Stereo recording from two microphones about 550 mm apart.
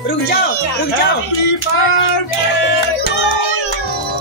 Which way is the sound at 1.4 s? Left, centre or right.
Left.